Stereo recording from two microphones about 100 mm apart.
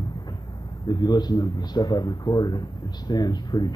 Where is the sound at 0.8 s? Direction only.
45° left (ahead or behind).